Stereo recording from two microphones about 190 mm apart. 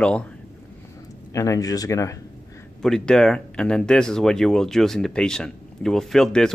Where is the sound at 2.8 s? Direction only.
5° left (ahead or behind).